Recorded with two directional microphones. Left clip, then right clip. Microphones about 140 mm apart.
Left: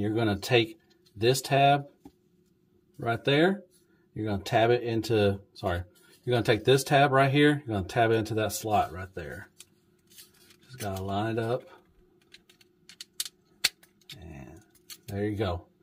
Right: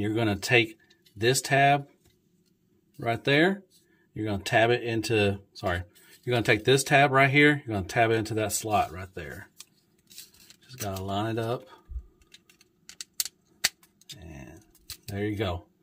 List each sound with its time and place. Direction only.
0.0 s speech: 15° right (ahead or behind)
3.0 s speech: 15° right (ahead or behind)
10.7 s speech: 20° right (ahead or behind)
14.2 s a sound: 15° right (ahead or behind)
15.0 s speech: 15° right (ahead or behind)